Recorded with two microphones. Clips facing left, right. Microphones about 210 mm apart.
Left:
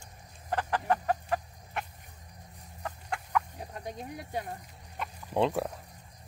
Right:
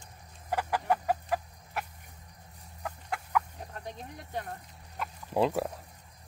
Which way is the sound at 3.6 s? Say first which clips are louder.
Left 2 dB; 10° left (ahead or behind).